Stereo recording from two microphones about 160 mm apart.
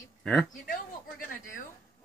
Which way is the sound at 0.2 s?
Centre (ahead or behind).